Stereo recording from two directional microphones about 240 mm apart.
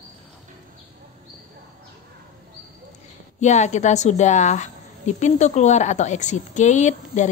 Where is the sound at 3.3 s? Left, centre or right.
Left.